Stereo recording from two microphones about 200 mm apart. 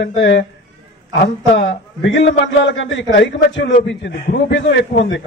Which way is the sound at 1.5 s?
60° left (ahead or behind).